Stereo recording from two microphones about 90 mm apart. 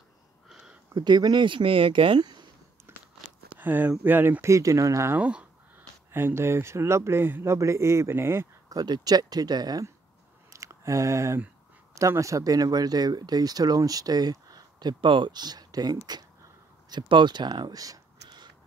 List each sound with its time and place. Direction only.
0.5 s a sound: 10° right (ahead or behind)
0.9 s speech: 50° right (ahead or behind); by 2.2 s 70° right (ahead or behind)
2.9 s a sound: 30° right (ahead or behind)
4.0 s speech: 20° right (ahead or behind)
5.1 s speech: 15° right (ahead or behind)
6.1 s speech: 25° right (ahead or behind)
8.6 s speech: 50° right (ahead or behind)
10.5 s a sound: 35° right (ahead or behind)
11.9 s speech: 35° right (ahead or behind)